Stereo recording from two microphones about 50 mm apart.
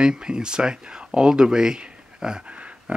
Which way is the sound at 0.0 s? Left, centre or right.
Centre.